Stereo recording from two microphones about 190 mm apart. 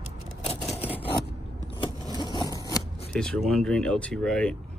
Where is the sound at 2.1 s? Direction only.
20° left (ahead or behind).